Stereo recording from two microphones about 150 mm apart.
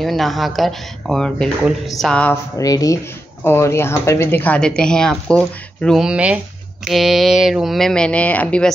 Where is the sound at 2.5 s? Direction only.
25° left (ahead or behind).